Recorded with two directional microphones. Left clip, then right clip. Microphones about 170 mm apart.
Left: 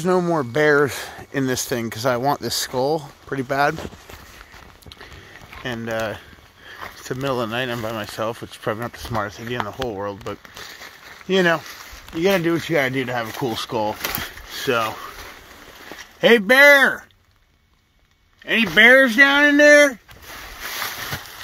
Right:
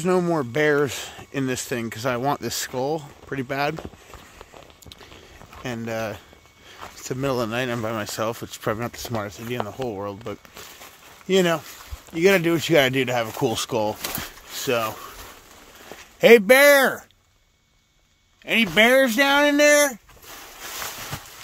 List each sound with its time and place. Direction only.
0.0 s speech: 10° right (ahead or behind)
2.2 s speech: 10° right (ahead or behind)
5.6 s speech: 25° right (ahead or behind)
9.8 s speech: 20° right (ahead or behind)
12.2 s speech: 50° right (ahead or behind)
14.6 s speech: 20° right (ahead or behind)
16.2 s speech: 35° right (ahead or behind)
18.4 s speech: 25° right (ahead or behind)